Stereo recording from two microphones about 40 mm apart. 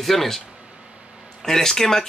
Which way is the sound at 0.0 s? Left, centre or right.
Centre.